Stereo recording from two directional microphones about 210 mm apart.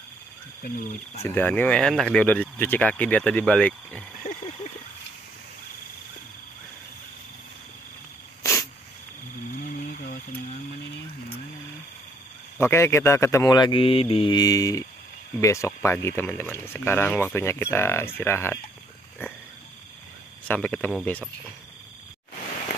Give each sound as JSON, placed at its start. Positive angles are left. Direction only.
{"t": 1.2, "sound": "speech", "side_deg": 10}
{"t": 8.4, "sound": "cat", "side_deg": 15}
{"t": 9.6, "sound": "a sound", "side_deg": 40}
{"t": 12.5, "sound": "speech", "side_deg": 10}
{"t": 20.4, "sound": "speech", "side_deg": 5}